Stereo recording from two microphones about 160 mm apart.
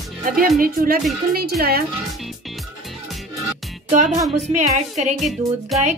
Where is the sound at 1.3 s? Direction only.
75° right (ahead or behind).